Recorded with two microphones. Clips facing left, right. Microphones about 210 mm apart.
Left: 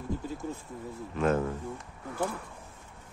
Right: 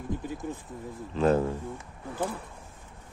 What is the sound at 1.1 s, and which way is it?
Speech, 30° right (ahead or behind).